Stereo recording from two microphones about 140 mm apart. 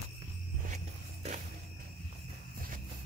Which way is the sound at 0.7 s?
60° right (ahead or behind).